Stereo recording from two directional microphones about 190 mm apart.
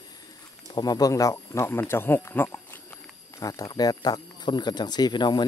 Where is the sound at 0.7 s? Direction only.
20° left (ahead or behind).